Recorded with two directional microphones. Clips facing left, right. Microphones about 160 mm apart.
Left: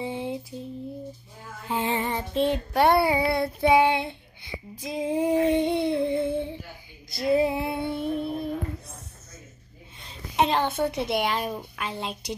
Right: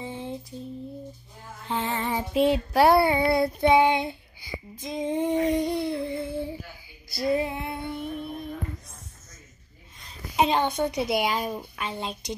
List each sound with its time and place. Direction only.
0.0 s lullaby: 15° left (ahead or behind)
1.7 s child singing: 10° left (ahead or behind)
2.0 s a woman's voice: 5° right (ahead or behind)
5.3 s humming: 30° left (ahead or behind)
7.2 s female singing: 25° left (ahead or behind)
10.3 s a woman's voice: centre (ahead or behind)